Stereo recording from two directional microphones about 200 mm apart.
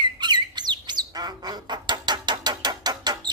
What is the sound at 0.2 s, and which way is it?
Squawk, 20° right (ahead or behind).